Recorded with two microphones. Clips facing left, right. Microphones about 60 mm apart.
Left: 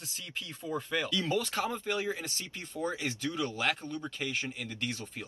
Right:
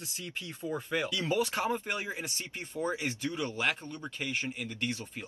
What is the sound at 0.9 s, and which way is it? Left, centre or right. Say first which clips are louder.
Speech: even; centre.